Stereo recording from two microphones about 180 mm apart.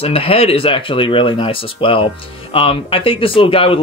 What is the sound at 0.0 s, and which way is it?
A man's voice, 30° left (ahead or behind).